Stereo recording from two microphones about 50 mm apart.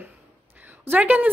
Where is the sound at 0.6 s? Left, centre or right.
Right.